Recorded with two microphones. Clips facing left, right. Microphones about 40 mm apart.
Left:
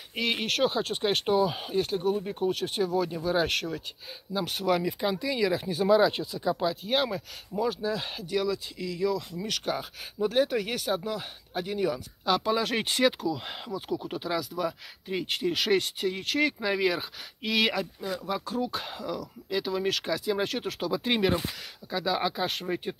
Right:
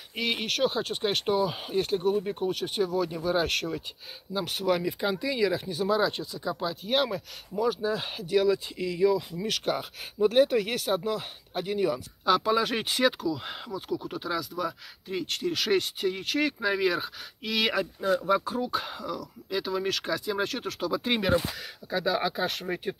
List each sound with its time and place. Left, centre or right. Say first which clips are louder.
0.1 s speech: left 1 dB; centre
7.8 s speech: right 1 dB; centre
8.5 s speech: right 5 dB; right
10.3 s speech: right 2 dB; centre
18.1 s speech: right 6 dB; centre